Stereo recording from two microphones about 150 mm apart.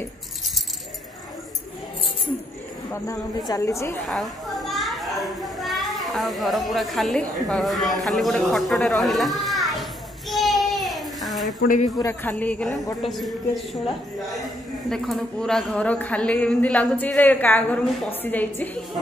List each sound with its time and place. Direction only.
2.9 s a woman's voice: 20° left (ahead or behind)
4.1 s a child's voice: centre (ahead or behind)
10.3 s child singing: centre (ahead or behind)
11.6 s speech: 60° left (ahead or behind)
12.0 s speech: 15° left (ahead or behind)
14.9 s speech: 5° left (ahead or behind)